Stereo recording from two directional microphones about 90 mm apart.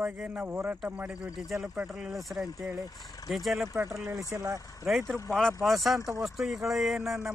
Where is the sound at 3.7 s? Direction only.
35° right (ahead or behind).